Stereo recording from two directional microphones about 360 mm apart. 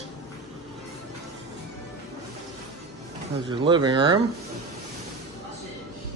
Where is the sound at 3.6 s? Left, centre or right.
Centre.